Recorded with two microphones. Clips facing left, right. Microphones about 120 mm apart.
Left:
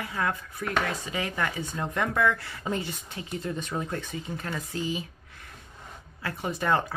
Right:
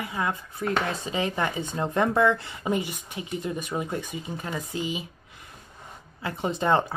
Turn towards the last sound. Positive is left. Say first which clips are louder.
# right 3 dB
turn(degrees=-25)  # may be behind; listen again after turning